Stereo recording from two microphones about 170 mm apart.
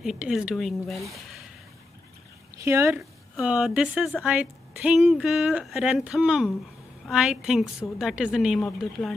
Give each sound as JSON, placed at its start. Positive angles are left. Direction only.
{"t": 0.0, "sound": "a woman's voice", "side_deg": -5}
{"t": 2.5, "sound": "speech", "side_deg": -15}
{"t": 3.0, "sound": "a woman's voice", "side_deg": 0}